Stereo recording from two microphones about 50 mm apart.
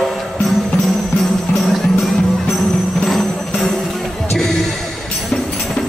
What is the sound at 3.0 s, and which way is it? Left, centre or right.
Jingle bell, centre.